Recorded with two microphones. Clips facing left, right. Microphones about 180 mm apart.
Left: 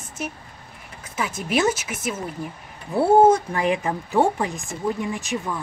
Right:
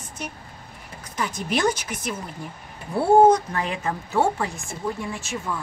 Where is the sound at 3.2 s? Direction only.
10° left (ahead or behind).